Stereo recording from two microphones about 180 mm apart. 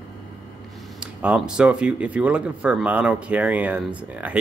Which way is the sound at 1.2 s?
5° right (ahead or behind).